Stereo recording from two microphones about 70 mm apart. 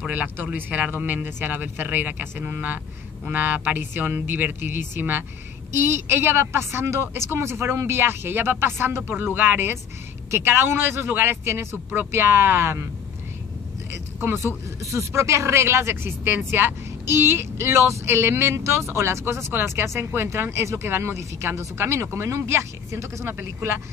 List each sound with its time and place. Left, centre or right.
0.1 s speech: right
14.2 s speech: right